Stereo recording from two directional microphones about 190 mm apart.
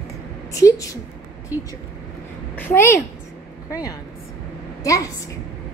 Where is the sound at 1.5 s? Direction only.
10° right (ahead or behind).